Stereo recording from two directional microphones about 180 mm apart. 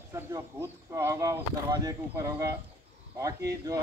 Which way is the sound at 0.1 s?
15° right (ahead or behind).